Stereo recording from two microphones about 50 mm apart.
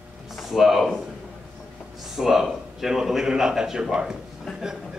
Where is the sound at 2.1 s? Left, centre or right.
Centre.